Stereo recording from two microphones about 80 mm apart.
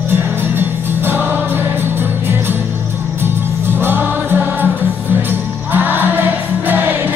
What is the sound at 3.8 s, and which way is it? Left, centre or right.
Music, right.